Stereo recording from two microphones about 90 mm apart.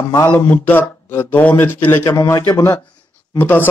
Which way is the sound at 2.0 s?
40° left (ahead or behind).